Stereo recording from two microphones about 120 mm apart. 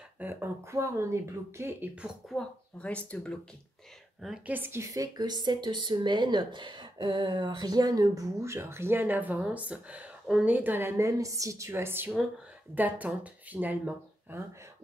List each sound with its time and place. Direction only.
0.2 s speech: 20° right (ahead or behind)
2.2 s speech: 5° left (ahead or behind)
4.5 s speech: 15° right (ahead or behind)